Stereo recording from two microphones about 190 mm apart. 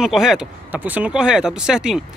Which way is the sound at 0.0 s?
Centre (ahead or behind).